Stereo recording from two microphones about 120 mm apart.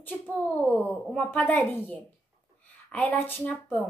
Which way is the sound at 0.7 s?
15° left (ahead or behind).